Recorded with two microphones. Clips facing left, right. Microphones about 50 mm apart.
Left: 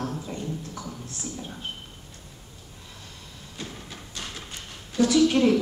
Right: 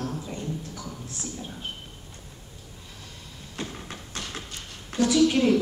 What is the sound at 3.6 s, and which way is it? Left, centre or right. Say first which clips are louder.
Train: right 3 dB; right.